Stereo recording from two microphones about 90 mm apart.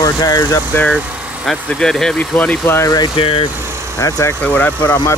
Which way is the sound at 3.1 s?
90° left.